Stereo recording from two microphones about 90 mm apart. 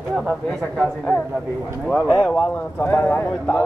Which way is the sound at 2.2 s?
15° left (ahead or behind).